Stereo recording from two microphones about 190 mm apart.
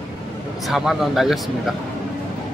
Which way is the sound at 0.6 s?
Centre (ahead or behind).